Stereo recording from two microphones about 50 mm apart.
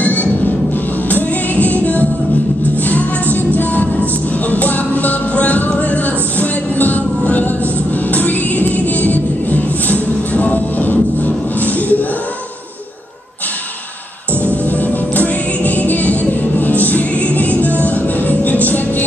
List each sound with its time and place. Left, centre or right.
0.0 s music: left
14.4 s music: left